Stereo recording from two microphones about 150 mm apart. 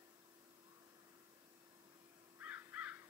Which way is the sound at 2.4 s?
10° right (ahead or behind).